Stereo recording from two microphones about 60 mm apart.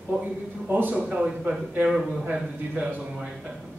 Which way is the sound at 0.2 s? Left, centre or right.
Right.